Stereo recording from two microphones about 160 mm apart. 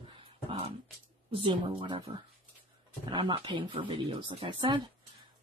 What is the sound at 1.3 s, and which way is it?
Speech, 35° right (ahead or behind).